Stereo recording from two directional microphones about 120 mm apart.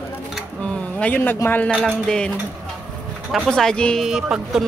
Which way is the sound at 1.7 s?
Centre (ahead or behind).